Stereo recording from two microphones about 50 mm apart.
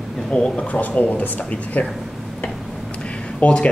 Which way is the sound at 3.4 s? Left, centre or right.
Left.